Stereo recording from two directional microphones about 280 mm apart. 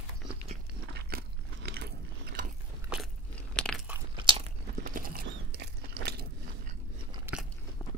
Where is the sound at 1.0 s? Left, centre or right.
Right.